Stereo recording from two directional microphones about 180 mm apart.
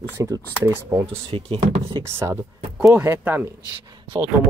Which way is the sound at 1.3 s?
30° right (ahead or behind).